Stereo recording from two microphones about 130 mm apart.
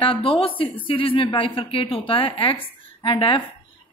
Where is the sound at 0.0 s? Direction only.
45° left (ahead or behind).